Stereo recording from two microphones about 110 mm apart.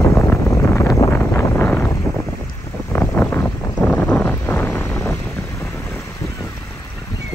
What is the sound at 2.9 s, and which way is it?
Vehicle, 15° left (ahead or behind).